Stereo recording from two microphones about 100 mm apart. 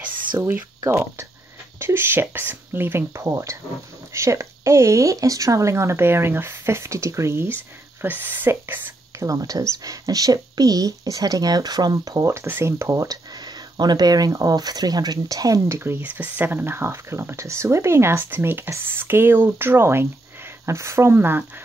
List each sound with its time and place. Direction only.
0.4 s speech: 20° right (ahead or behind)
9.2 s speech: 35° right (ahead or behind)
12.3 s speech: 25° right (ahead or behind)
13.7 s speech: 45° right (ahead or behind)
15.8 s speech: 20° right (ahead or behind)